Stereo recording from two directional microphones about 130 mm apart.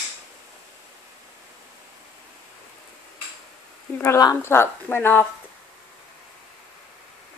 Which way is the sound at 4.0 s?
25° left (ahead or behind).